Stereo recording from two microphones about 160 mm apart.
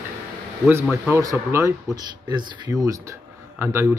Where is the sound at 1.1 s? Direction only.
20° right (ahead or behind).